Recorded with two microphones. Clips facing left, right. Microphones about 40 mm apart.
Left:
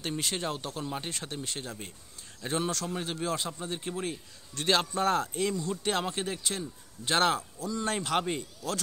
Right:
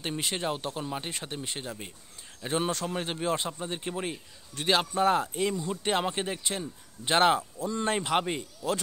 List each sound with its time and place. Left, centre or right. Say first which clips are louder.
0.0 s speech: right 1 dB; centre
7.5 s speech: right 3 dB; right